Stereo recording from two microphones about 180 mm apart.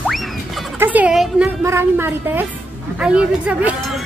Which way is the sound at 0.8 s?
10° right (ahead or behind).